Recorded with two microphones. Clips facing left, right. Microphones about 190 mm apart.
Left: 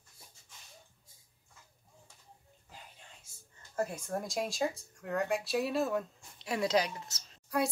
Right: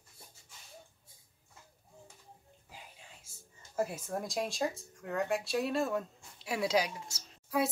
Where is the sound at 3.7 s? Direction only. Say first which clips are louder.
Even; 5° right (ahead or behind).